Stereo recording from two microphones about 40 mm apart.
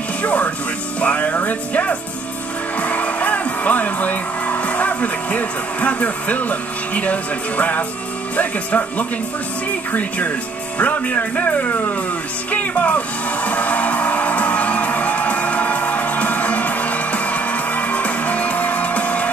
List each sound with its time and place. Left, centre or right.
0.2 s music: left
2.8 s speech: left
12.4 s music: left